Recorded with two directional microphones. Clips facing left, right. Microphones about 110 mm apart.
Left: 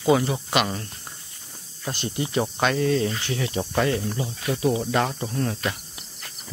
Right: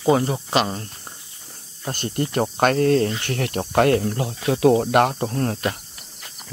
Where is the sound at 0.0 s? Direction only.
35° right (ahead or behind).